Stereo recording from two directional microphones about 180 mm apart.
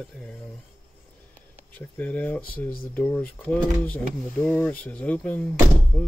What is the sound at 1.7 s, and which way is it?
Speech, 10° left (ahead or behind).